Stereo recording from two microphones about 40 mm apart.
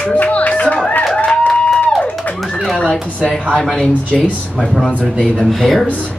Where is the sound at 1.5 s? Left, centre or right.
Centre.